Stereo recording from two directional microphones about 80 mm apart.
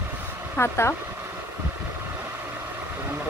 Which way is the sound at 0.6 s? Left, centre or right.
Left.